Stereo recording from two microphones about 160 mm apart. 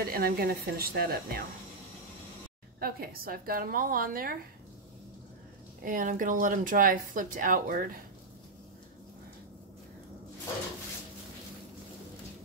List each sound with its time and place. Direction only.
0.0 s a woman's voice: 70° right (ahead or behind)
2.8 s speech: 70° right (ahead or behind)
5.9 s speech: 55° right (ahead or behind)